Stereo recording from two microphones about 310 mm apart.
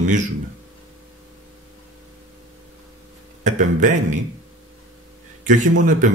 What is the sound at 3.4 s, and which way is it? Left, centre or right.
Speech, right.